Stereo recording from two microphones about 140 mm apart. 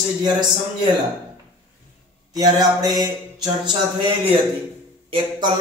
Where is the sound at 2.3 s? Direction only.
30° right (ahead or behind).